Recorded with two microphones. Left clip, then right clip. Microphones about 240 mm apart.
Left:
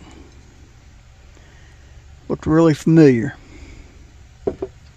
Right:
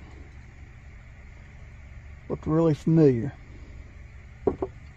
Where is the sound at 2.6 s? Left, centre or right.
Left.